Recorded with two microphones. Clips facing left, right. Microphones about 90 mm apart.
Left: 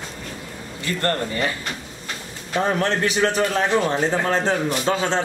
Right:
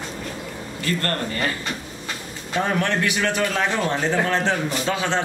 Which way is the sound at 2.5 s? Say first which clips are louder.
Left 1 dB; 35° left (ahead or behind).